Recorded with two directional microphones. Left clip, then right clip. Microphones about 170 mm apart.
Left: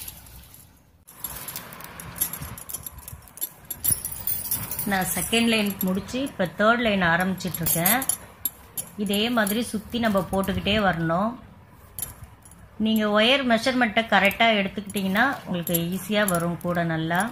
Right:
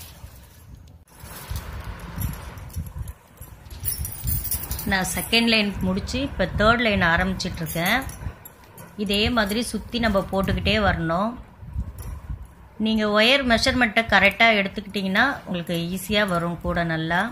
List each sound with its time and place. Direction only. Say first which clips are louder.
4.8 s a woman's voice: right 2 dB; 10° right (ahead or behind)
12.8 s a woman's voice: right 2 dB; 10° right (ahead or behind)